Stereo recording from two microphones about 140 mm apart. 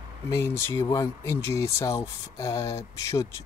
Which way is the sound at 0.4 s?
15° left (ahead or behind).